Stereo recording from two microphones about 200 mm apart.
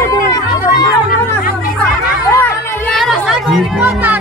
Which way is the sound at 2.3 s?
10° left (ahead or behind).